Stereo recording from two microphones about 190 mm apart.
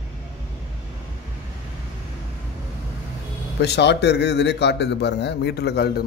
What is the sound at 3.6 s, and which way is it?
A man's voice, 65° left (ahead or behind).